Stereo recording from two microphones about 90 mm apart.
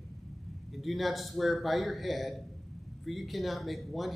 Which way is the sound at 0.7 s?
Centre (ahead or behind).